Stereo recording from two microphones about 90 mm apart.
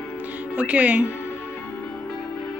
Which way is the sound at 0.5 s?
15° right (ahead or behind).